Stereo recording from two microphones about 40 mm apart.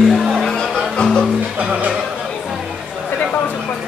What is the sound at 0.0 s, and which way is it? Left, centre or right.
Music, centre.